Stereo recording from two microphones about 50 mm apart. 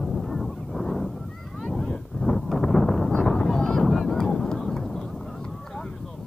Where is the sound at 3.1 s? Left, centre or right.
Centre.